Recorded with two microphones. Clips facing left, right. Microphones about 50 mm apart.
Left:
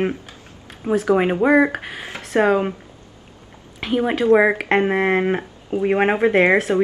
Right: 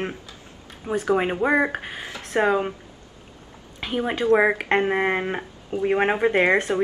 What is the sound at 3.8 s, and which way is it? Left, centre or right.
Speech, centre.